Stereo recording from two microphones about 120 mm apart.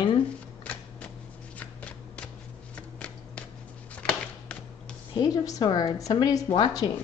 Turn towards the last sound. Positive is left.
turn(degrees=45)  # may be behind; listen again after turning